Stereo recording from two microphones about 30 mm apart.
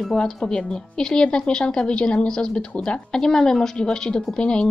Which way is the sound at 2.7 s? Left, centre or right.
Left.